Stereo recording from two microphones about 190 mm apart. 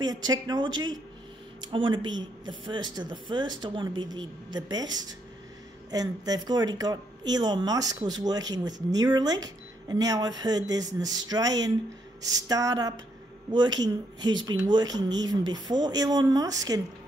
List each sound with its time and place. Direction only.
0.3 s speech: 20° right (ahead or behind)